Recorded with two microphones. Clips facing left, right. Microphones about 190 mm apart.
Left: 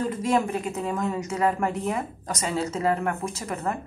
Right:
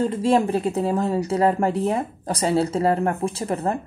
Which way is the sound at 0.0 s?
30° right (ahead or behind).